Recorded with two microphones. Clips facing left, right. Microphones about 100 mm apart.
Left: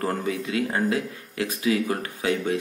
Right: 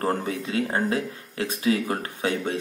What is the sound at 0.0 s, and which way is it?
Speech, 30° right (ahead or behind).